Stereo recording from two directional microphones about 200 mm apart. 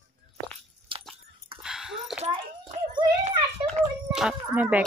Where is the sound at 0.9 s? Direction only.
25° right (ahead or behind).